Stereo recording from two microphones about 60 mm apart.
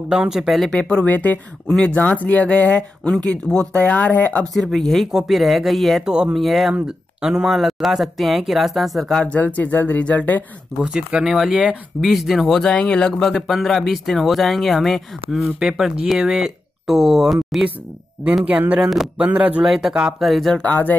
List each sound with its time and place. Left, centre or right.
0.1 s speech: centre
0.7 s speech: centre
1.0 s speech: left
4.6 s speech: centre
6.0 s speech: centre
6.3 s speech: centre
6.7 s speech: centre
9.2 s speech: left
10.8 s speech: centre
18.4 s speech: right
19.6 s speech: centre
20.5 s speech: left